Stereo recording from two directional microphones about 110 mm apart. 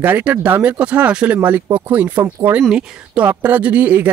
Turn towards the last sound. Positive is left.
turn(degrees=-15)  # may be behind; listen again after turning